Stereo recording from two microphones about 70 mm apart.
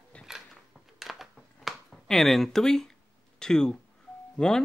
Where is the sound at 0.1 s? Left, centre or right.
Centre.